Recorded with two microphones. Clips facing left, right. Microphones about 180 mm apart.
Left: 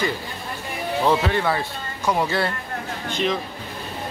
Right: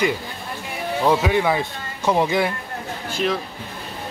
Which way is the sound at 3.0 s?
5° right (ahead or behind).